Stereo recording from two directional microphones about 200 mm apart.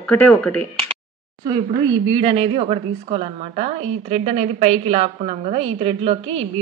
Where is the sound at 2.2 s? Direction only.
30° right (ahead or behind).